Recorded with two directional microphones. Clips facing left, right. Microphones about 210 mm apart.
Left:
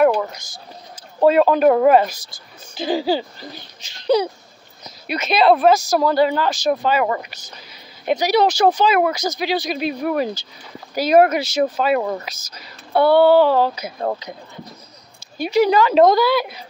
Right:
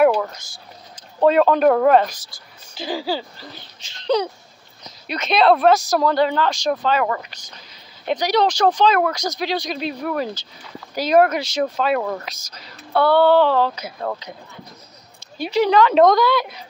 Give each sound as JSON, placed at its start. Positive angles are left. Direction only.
{"t": 0.1, "sound": "a sound", "side_deg": 15}
{"t": 1.2, "sound": "speech", "side_deg": 5}
{"t": 2.3, "sound": "speech", "side_deg": 20}
{"t": 15.3, "sound": "speech", "side_deg": 10}